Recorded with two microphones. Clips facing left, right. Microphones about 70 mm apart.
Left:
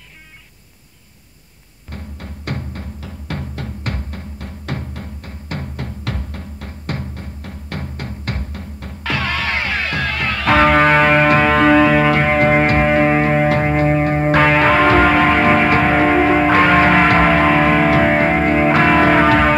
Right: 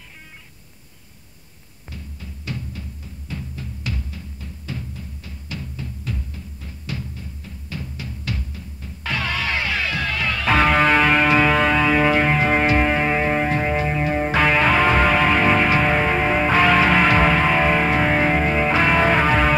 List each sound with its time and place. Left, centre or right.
1.9 s music: left
3.0 s music: left
14.4 s music: left
16.6 s music: left
18.1 s music: left